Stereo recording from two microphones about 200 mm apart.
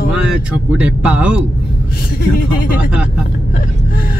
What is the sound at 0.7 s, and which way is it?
Speech, 5° right (ahead or behind).